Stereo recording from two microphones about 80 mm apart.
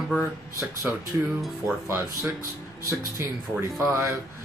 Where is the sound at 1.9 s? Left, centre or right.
Right.